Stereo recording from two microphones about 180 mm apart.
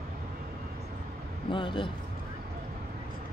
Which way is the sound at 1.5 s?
30° left (ahead or behind).